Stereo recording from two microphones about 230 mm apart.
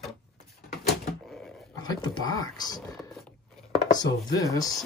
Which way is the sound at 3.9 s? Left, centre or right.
Centre.